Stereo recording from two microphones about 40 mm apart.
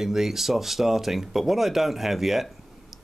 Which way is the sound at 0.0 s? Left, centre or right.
Centre.